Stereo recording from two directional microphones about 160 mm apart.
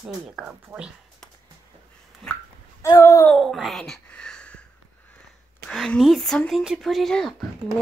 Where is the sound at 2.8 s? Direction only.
20° left (ahead or behind).